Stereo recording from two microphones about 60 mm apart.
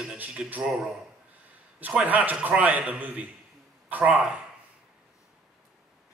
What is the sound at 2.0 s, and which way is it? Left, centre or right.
A man's voice, right.